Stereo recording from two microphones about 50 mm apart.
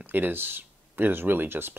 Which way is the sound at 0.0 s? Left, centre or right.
Right.